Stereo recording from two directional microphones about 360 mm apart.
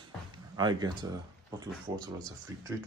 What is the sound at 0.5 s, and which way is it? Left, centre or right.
Speech, centre.